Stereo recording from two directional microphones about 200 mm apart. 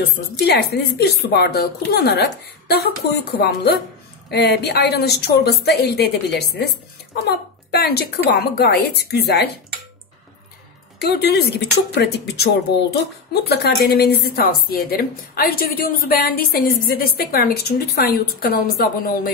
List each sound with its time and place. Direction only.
0.0 s a woman's voice: 55° left (ahead or behind)
11.0 s a woman's voice: 55° left (ahead or behind)